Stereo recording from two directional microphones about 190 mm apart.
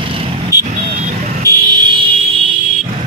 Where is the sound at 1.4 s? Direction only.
20° right (ahead or behind).